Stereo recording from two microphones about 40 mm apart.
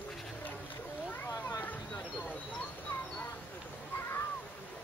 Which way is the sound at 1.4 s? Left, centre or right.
Left.